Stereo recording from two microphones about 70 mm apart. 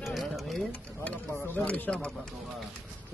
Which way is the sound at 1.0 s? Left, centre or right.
Centre.